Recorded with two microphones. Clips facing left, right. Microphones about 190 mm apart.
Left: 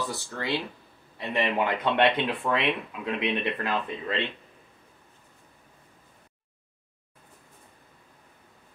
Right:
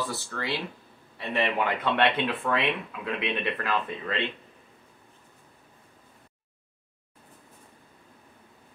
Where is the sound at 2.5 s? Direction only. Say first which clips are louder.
Left 1 dB; 25° left (ahead or behind).